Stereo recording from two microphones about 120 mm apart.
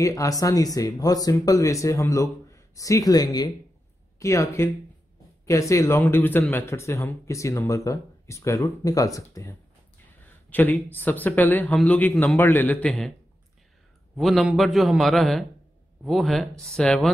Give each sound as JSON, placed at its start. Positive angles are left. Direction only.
{"t": 0.0, "sound": "a man's voice", "side_deg": 30}
{"t": 10.5, "sound": "a man's voice", "side_deg": 15}
{"t": 14.1, "sound": "speech", "side_deg": 0}